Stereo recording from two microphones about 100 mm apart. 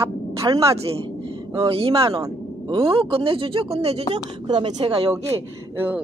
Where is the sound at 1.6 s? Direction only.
75° right (ahead or behind).